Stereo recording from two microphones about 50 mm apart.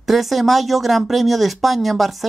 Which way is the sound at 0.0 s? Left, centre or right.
Centre.